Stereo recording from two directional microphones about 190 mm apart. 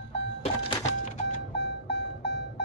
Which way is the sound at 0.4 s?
30° left (ahead or behind).